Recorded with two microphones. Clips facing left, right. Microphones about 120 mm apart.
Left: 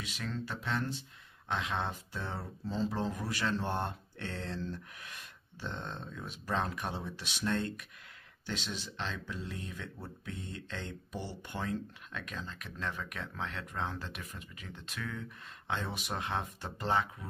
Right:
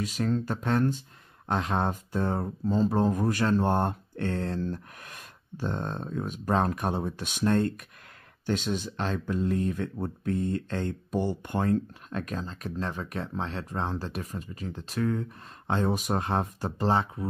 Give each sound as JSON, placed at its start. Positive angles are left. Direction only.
{"t": 0.0, "sound": "speech", "side_deg": -40}